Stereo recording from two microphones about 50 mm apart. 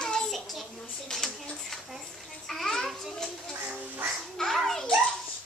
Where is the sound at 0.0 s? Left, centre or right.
Centre.